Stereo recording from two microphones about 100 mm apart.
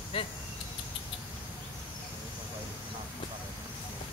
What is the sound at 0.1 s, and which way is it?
Speech, 65° left (ahead or behind).